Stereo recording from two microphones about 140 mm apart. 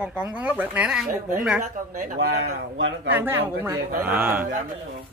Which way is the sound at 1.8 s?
80° right.